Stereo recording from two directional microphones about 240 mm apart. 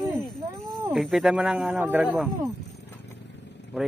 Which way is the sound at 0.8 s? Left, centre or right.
Centre.